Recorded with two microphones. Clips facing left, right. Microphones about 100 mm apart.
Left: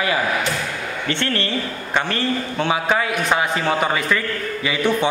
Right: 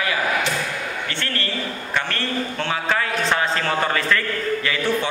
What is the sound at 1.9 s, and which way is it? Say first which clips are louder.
A man's voice: left 5 dB; 15° left (ahead or behind).